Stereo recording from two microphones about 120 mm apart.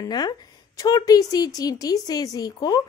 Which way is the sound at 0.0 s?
35° left (ahead or behind).